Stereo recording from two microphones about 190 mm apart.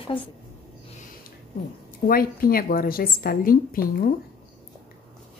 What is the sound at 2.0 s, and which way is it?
A woman's voice, 50° left (ahead or behind).